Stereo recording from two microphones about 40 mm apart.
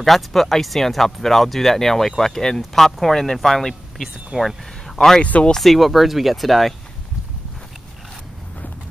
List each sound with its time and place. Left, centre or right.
0.0 s speech: centre
5.2 s speech: left
5.6 s speech: centre